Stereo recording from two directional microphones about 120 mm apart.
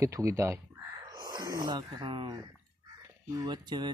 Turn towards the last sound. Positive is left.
turn(degrees=-35)  # may be behind; listen again after turning